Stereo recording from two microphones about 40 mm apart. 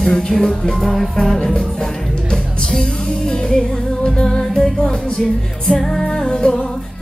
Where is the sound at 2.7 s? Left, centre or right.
Centre.